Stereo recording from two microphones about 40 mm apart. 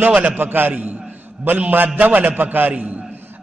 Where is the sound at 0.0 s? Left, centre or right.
Right.